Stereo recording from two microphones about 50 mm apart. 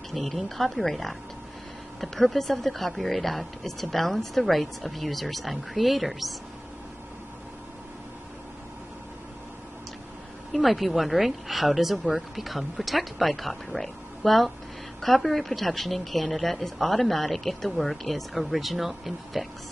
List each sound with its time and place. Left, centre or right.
0.1 s speech: centre
10.5 s speech: centre